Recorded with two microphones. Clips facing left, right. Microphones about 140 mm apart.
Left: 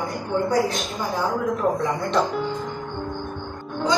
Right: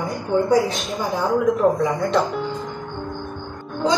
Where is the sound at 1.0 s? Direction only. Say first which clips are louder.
Right 3 dB; 20° right (ahead or behind).